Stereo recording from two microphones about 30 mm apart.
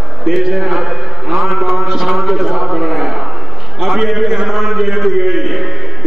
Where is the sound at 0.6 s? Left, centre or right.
Centre.